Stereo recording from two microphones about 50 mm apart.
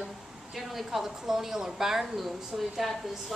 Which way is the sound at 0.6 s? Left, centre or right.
Centre.